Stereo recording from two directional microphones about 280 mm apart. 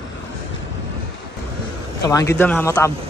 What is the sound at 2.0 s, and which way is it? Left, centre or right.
Speech, centre.